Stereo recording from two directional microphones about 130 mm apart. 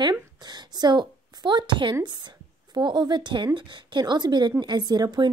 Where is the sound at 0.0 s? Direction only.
35° right (ahead or behind).